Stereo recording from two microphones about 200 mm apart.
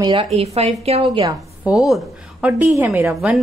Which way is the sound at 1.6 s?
Centre (ahead or behind).